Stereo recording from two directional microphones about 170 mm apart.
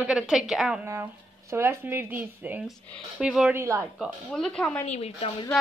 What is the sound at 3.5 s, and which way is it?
Speech, 15° right (ahead or behind).